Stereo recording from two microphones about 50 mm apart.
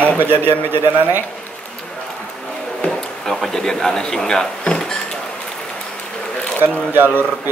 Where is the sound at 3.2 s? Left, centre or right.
Centre.